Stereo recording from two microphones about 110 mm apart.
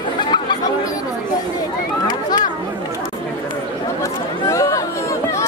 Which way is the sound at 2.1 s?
40° left (ahead or behind).